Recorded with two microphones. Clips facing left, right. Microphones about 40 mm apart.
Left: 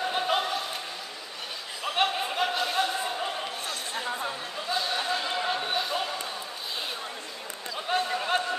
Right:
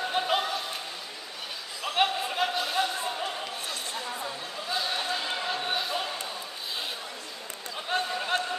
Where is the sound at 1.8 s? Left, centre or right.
Centre.